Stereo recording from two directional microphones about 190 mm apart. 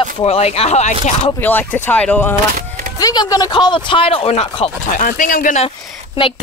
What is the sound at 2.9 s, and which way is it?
Speech, 20° left (ahead or behind).